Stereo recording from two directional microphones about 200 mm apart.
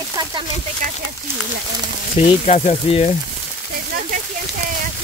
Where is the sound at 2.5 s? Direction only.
30° left (ahead or behind).